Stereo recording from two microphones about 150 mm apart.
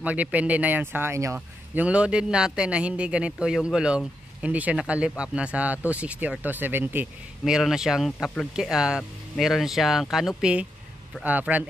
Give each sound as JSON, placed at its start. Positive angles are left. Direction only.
{"t": 0.0, "sound": "a man's voice", "side_deg": -10}
{"t": 1.9, "sound": "a man's voice", "side_deg": -5}